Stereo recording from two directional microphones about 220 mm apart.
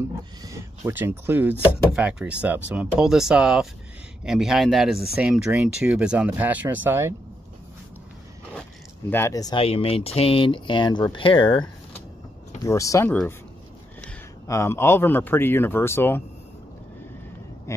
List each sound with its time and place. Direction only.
0.0 s speech: 15° right (ahead or behind)
9.1 s speech: 15° left (ahead or behind)
12.6 s speech: 15° left (ahead or behind)
17.7 s speech: 15° left (ahead or behind)